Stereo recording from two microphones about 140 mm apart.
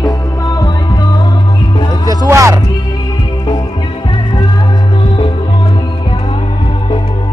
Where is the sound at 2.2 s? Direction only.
20° right (ahead or behind).